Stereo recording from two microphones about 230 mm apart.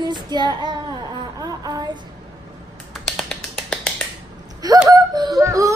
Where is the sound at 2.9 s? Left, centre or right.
Centre.